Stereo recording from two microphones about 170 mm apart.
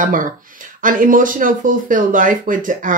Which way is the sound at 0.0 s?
50° right (ahead or behind).